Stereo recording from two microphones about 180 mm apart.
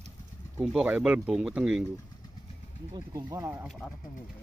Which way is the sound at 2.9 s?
20° right (ahead or behind).